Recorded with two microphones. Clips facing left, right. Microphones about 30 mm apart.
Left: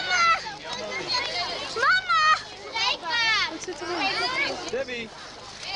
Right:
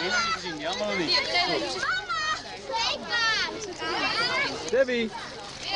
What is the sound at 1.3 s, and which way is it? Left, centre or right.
Children playing, right.